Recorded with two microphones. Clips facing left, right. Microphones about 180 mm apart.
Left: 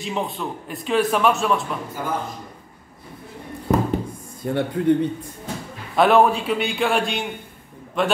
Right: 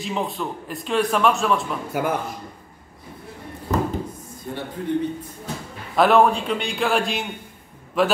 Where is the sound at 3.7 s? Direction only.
60° left (ahead or behind).